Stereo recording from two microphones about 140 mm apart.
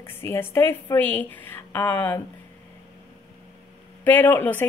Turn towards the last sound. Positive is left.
turn(degrees=15)  # may be behind; listen again after turning